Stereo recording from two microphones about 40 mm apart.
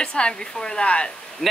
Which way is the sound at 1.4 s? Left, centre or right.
Centre.